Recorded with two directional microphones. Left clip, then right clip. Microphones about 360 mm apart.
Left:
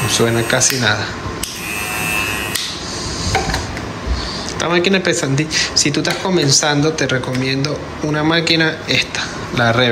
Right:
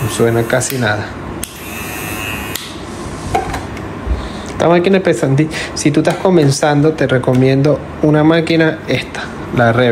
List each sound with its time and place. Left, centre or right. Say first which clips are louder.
0.1 s speech: right 3 dB; centre
4.6 s speech: right 5 dB; centre